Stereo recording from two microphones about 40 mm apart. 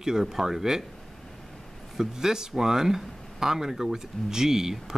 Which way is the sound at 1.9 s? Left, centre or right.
Centre.